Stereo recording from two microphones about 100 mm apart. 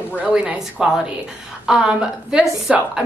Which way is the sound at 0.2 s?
10° right (ahead or behind).